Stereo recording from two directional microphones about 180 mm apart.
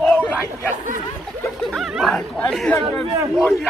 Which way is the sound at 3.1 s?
15° right (ahead or behind).